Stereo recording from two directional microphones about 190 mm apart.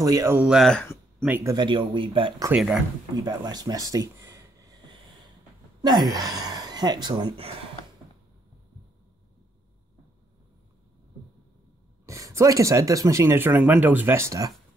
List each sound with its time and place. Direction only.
0.0 s speech: 20° right (ahead or behind); by 0.8 s centre (ahead or behind)
1.2 s speech: 15° right (ahead or behind)
2.5 s speech: 5° right (ahead or behind)
3.3 s speech: 20° right (ahead or behind)
12.1 s speech: 15° right (ahead or behind)